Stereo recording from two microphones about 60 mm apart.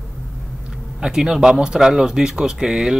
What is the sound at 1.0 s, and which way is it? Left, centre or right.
Speech, centre.